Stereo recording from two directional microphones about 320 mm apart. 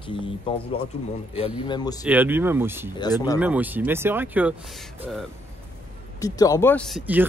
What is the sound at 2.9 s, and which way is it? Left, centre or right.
Speech, centre.